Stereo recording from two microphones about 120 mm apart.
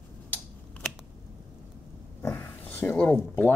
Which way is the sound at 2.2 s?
20° left (ahead or behind).